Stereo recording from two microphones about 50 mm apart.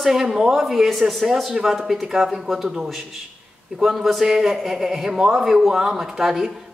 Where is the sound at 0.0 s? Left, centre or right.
Centre.